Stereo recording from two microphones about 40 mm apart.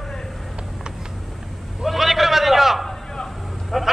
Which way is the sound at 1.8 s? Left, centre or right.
Centre.